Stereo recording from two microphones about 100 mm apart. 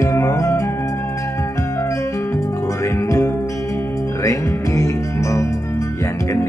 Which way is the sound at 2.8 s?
30° left (ahead or behind).